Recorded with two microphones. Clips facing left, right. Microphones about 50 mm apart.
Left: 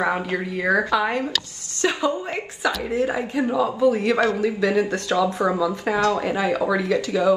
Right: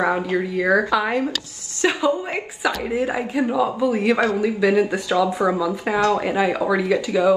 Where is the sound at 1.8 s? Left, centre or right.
Centre.